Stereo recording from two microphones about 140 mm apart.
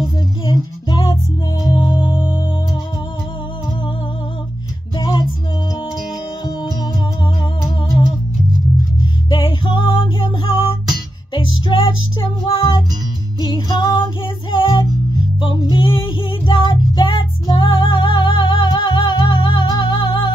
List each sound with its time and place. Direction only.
0.5 s music: 30° left (ahead or behind)
4.9 s music: 30° left (ahead or behind)
9.3 s music: 35° left (ahead or behind)
15.7 s child singing: 35° left (ahead or behind)